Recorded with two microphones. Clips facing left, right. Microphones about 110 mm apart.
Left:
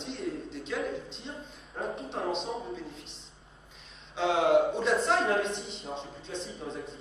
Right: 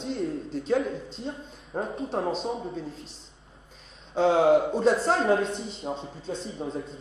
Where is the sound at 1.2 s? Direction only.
35° right (ahead or behind).